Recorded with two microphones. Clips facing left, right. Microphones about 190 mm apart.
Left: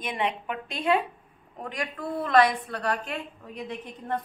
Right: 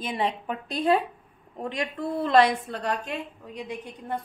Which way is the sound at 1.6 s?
25° right (ahead or behind).